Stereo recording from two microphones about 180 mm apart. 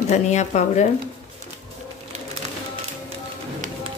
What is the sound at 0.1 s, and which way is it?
Speech, 40° left (ahead or behind).